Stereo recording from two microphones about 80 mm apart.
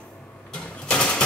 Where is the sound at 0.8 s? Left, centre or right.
Centre.